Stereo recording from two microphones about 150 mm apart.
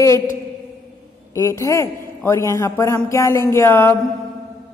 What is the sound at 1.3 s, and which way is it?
A woman's voice, 20° left (ahead or behind).